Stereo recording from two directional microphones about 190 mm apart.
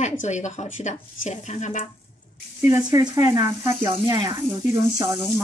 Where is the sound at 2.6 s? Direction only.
15° right (ahead or behind).